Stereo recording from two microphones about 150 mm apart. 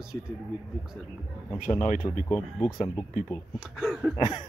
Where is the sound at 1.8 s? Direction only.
65° left (ahead or behind).